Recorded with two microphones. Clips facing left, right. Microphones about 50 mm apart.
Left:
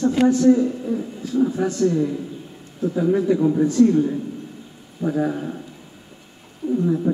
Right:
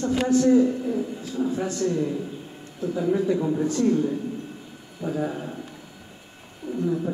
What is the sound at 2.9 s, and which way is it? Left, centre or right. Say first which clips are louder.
Speech: left 4 dB; centre.